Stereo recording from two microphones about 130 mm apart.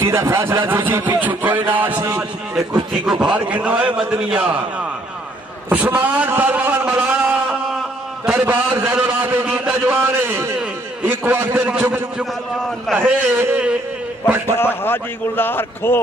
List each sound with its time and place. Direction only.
0.0 s speech: 20° right (ahead or behind)
3.1 s speech: 5° right (ahead or behind)
5.7 s speech: 10° right (ahead or behind)
7.2 s a sound: 5° right (ahead or behind)
8.3 s a man's voice: 15° right (ahead or behind)
14.6 s a man's voice: 15° left (ahead or behind)